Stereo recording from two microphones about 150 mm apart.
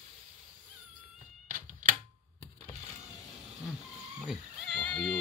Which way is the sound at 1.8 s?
60° right (ahead or behind).